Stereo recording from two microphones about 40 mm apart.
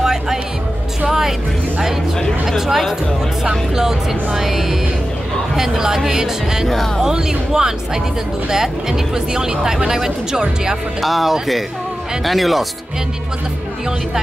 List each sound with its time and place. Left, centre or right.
0.0 s music: centre
2.4 s speech: centre
11.0 s speech: centre